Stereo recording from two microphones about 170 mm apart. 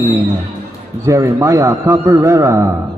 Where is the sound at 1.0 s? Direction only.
15° right (ahead or behind).